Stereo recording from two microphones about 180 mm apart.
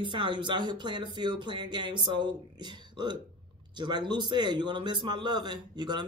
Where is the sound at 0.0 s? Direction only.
25° right (ahead or behind).